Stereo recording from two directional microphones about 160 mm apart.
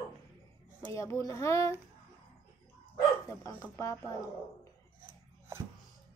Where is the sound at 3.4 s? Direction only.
20° left (ahead or behind).